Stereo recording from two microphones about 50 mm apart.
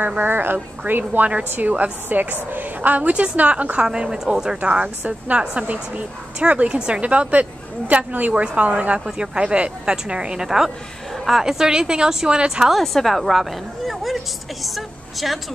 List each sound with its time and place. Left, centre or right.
0.2 s a woman's voice: right
3.8 s a woman's voice: centre
12.7 s a woman's voice: centre